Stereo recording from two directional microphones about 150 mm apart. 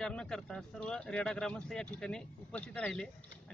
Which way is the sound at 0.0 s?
5° left (ahead or behind).